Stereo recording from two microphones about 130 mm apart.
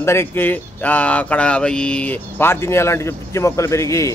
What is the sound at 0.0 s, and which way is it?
Speech, 20° left (ahead or behind).